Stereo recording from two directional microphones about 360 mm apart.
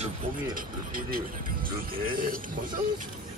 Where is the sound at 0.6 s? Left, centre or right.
Right.